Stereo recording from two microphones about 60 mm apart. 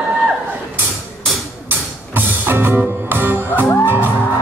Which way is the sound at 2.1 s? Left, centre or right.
Right.